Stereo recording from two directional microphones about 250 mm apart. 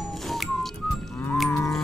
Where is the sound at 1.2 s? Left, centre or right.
Centre.